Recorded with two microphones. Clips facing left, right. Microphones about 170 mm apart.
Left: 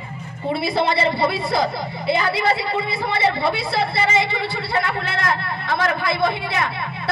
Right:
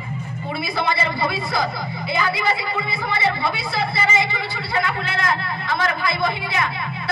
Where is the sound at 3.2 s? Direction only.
65° left (ahead or behind).